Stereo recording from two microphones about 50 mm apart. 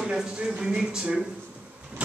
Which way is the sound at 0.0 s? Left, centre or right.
Centre.